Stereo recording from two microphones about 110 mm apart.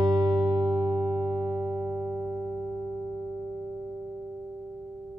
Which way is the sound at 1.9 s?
5° left (ahead or behind).